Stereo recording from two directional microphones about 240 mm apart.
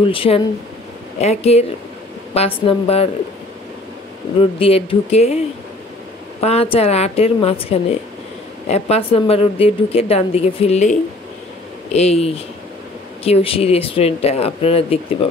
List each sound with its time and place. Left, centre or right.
0.0 s speech: left
4.6 s speech: left
6.4 s speech: left